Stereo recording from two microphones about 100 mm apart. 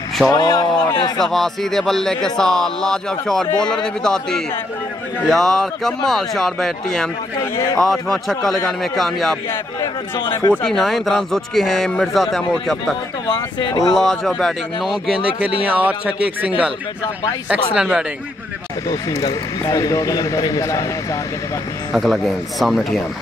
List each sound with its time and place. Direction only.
0.3 s speech: 40° left (ahead or behind)
1.2 s speech: 5° left (ahead or behind)
7.5 s a man's voice: 25° left (ahead or behind)
7.8 s speech: 5° left (ahead or behind)
10.1 s speech: 50° left (ahead or behind)
10.7 s speech: 5° left (ahead or behind)
13.3 s speech: 50° left (ahead or behind)
13.9 s speech: 5° left (ahead or behind)
15.4 s speech: 15° right (ahead or behind)
17.7 s speech: 10° right (ahead or behind)
18.9 s speech: 35° left (ahead or behind)
21.9 s speech: centre (ahead or behind)